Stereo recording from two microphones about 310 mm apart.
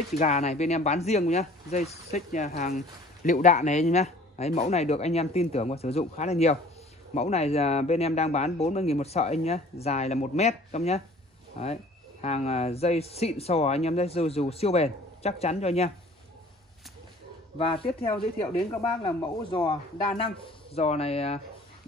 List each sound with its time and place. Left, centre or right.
0.2 s speech: left
17.6 s speech: centre